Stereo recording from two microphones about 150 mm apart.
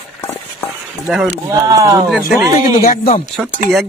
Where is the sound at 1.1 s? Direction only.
5° right (ahead or behind).